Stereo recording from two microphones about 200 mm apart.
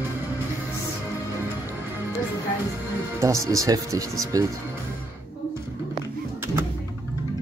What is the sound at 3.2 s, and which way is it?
Speech, 15° right (ahead or behind).